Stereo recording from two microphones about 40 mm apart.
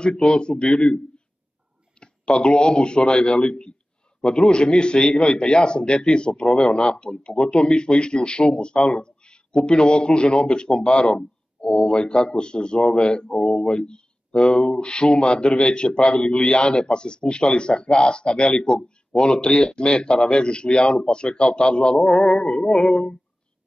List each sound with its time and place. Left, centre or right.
0.0 s a man's voice: left